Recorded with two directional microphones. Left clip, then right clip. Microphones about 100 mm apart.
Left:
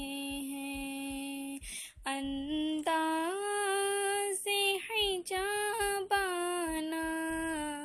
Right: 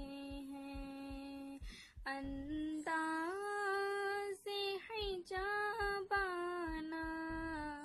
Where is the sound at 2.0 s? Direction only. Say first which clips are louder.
Left 8 dB; 30° left (ahead or behind).